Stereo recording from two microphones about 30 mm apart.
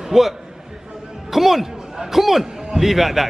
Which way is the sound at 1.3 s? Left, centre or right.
Centre.